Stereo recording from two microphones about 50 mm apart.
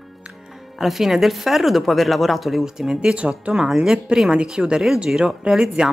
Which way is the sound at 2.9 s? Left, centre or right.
Right.